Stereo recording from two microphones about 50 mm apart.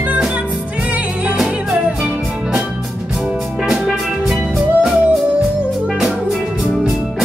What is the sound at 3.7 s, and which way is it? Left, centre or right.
Music, centre.